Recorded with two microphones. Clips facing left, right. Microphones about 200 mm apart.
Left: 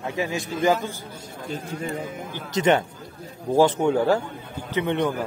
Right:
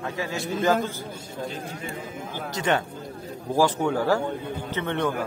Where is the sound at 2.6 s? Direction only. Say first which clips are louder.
Left 5 dB; 20° left (ahead or behind).